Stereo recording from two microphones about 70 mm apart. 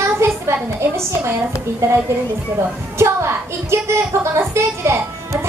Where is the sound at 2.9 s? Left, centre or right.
Right.